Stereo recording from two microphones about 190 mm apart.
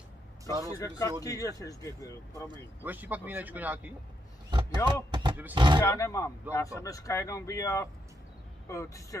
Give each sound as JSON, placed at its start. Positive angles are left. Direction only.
{"t": 0.7, "sound": "speech", "side_deg": 15}
{"t": 2.8, "sound": "speech", "side_deg": -10}
{"t": 4.5, "sound": "a sound", "side_deg": -25}
{"t": 5.5, "sound": "speech", "side_deg": -25}
{"t": 5.8, "sound": "speech", "side_deg": 15}